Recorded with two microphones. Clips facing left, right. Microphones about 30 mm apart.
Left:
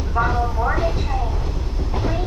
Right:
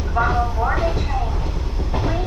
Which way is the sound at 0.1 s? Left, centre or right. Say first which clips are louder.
Right 1 dB; centre.